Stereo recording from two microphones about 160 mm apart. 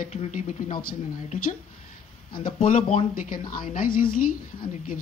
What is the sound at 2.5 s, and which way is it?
Speech, 55° left (ahead or behind).